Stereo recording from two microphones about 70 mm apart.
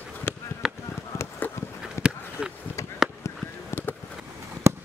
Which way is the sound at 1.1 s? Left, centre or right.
Left.